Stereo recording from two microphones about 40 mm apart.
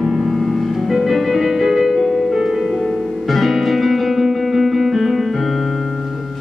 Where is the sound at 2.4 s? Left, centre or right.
Centre.